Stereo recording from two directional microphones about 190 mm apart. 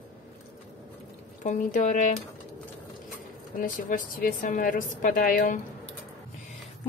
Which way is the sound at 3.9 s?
45° left (ahead or behind).